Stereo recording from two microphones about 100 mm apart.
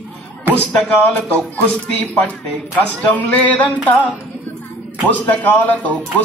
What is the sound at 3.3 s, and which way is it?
Speech, 15° left (ahead or behind).